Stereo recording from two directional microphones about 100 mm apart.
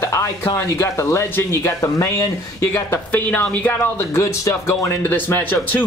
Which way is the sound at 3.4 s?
15° left (ahead or behind).